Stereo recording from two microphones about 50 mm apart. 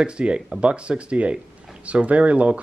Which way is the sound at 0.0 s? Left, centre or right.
Right.